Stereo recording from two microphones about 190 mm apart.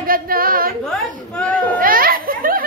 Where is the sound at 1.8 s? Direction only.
50° right (ahead or behind).